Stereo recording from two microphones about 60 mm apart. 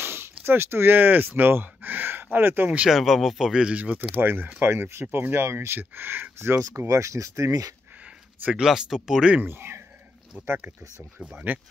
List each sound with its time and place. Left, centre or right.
0.0 s a sound: right
2.3 s speech: right
2.9 s speech: centre
3.5 s speech: right
4.6 s speech: right
5.8 s speech: right
6.7 s speech: right
8.5 s speech: centre
9.4 s speech: right
10.3 s speech: right